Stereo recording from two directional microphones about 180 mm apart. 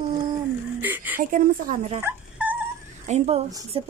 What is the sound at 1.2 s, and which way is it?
Speech, 45° right (ahead or behind).